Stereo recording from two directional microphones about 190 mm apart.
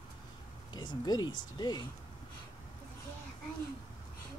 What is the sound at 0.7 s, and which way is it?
Speech, 20° left (ahead or behind).